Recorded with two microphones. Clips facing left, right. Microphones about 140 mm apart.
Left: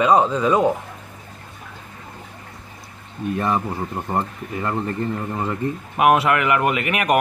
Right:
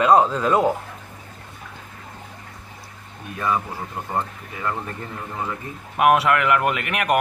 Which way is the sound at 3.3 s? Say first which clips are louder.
Left 1 dB; 25° left (ahead or behind).